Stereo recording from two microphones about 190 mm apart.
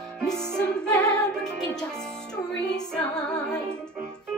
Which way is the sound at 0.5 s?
5° left (ahead or behind).